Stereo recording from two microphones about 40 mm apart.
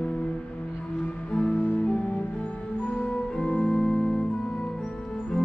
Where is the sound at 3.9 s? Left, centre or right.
Left.